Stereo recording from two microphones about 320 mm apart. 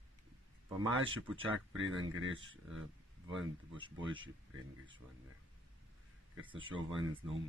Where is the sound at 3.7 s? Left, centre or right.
Centre.